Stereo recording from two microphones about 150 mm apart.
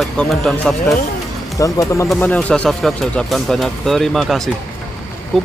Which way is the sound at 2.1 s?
10° left (ahead or behind).